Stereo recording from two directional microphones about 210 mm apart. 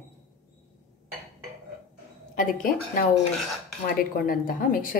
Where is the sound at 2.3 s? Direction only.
40° left (ahead or behind).